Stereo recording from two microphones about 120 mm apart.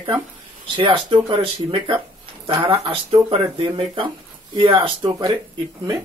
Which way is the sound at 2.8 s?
55° right (ahead or behind).